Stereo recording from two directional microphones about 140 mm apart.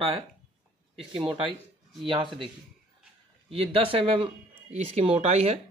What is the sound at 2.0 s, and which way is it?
Speech, 40° right (ahead or behind).